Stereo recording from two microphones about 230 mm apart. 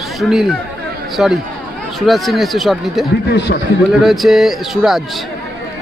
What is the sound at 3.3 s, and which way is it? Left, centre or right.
Speech, left.